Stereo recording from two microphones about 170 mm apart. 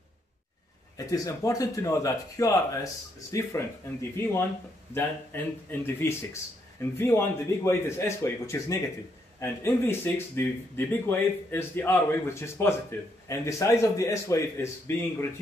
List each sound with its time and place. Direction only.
0.9 s speech: 20° left (ahead or behind)